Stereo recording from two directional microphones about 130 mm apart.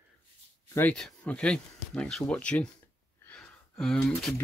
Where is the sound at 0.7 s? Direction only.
15° left (ahead or behind).